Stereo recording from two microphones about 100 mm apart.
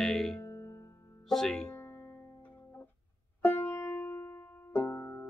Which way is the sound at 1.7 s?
25° left (ahead or behind).